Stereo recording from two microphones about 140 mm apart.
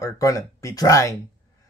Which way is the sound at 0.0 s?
25° left (ahead or behind).